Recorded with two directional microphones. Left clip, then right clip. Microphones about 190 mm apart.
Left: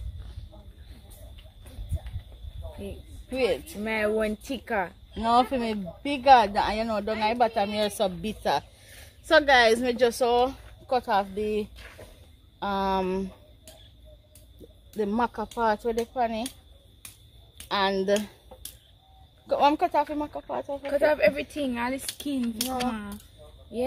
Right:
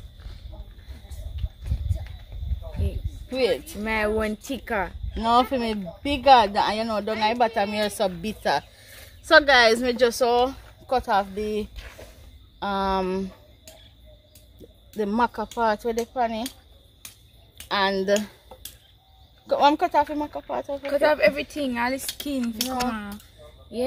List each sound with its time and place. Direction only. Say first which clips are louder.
1.3 s a sound: right 7 dB; 5° right (ahead or behind)
3.3 s speech: right 3 dB; centre (ahead or behind)
3.8 s speech: right 1 dB; 15° right (ahead or behind); by 13.7 s centre (ahead or behind)
15.0 s speech: right 3 dB; centre (ahead or behind)
17.6 s a sound: right 2 dB; 5° left (ahead or behind)
19.4 s speech: right 3 dB; centre (ahead or behind)
20.8 s a child's voice: right 2 dB; 15° right (ahead or behind)